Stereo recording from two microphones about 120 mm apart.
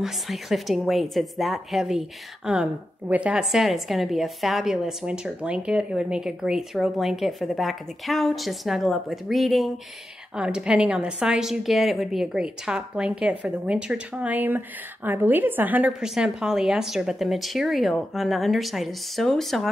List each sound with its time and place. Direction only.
0.0 s a woman's voice: centre (ahead or behind)